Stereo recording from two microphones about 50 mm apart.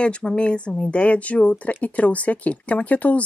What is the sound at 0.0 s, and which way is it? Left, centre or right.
Speech, left.